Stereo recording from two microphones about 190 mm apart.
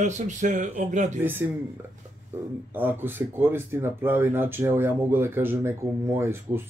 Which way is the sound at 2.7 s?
10° right (ahead or behind).